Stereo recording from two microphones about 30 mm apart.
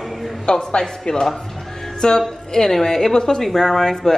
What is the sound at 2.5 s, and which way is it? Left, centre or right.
A woman's voice, centre.